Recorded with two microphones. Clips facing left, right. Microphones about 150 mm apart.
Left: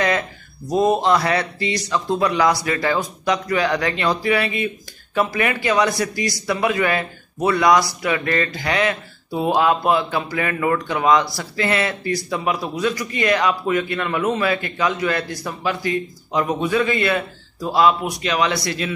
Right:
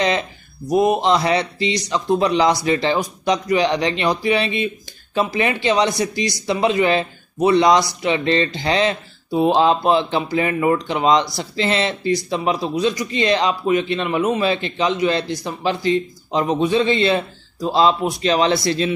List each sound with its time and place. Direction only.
0.0 s speech: 20° right (ahead or behind)